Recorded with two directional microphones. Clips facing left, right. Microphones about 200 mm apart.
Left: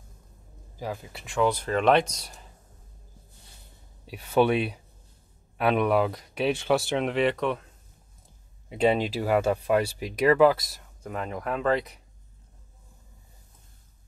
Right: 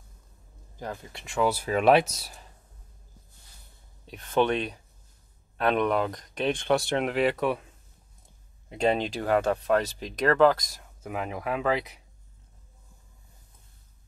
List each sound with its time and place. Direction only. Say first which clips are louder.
0.7 s speech: left 2 dB; 5° left (ahead or behind)
4.0 s speech: left 2 dB; 10° left (ahead or behind)
8.6 s speech: left 2 dB; 5° left (ahead or behind)
11.0 s speech: even; 5° right (ahead or behind)